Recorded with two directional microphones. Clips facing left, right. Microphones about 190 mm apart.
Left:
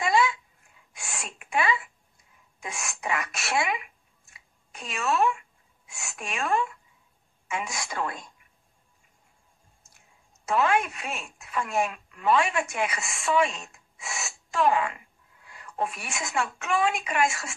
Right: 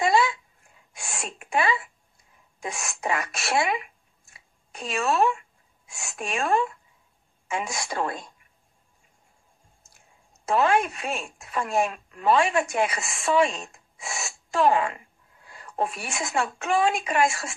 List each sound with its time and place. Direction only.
0.0 s a sound: 35° right (ahead or behind)
2.6 s speech: 35° right (ahead or behind)
10.4 s speech: 35° right (ahead or behind)